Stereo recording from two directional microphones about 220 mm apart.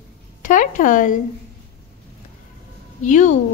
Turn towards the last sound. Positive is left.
turn(degrees=35)  # may be behind; listen again after turning